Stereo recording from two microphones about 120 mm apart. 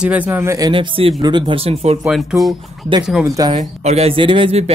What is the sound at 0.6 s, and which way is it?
Speech, 45° right (ahead or behind).